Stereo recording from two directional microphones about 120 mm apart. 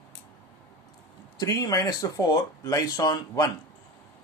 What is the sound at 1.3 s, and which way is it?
Speech, 30° left (ahead or behind).